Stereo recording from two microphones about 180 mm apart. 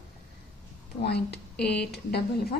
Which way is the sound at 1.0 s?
65° left (ahead or behind).